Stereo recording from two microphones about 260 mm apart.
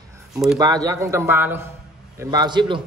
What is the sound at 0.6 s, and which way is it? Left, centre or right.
Speech, centre.